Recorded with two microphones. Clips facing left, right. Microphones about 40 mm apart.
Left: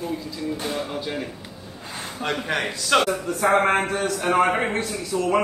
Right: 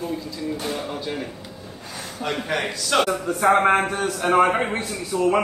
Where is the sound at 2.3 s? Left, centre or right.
Centre.